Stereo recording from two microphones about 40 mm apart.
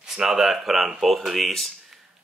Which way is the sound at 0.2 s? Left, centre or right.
Centre.